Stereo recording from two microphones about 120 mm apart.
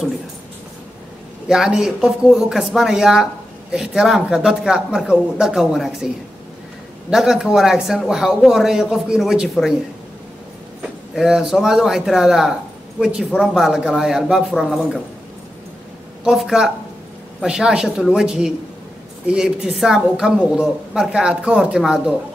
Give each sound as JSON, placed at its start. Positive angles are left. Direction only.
{"t": 1.5, "sound": "a woman's voice", "side_deg": -5}
{"t": 7.1, "sound": "a woman's voice", "side_deg": -5}
{"t": 10.8, "sound": "a woman's voice", "side_deg": -5}
{"t": 16.3, "sound": "a woman's voice", "side_deg": -5}